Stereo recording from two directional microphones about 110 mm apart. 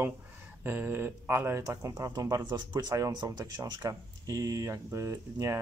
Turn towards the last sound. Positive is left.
turn(degrees=-30)  # may be behind; listen again after turning